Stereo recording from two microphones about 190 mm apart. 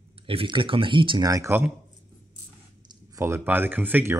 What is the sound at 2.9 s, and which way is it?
Speech, 15° right (ahead or behind).